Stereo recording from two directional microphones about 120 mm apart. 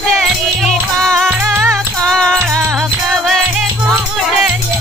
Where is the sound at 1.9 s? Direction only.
5° left (ahead or behind).